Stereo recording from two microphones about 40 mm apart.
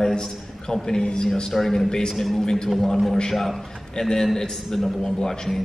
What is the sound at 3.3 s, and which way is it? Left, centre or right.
A man's voice, centre.